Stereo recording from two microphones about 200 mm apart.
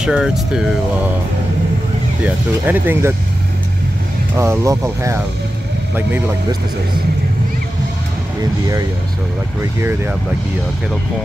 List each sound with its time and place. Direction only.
0.0 s speech: 5° right (ahead or behind)
2.2 s speech: 10° right (ahead or behind)
4.4 s speech: 15° right (ahead or behind)
8.4 s speech: 15° right (ahead or behind)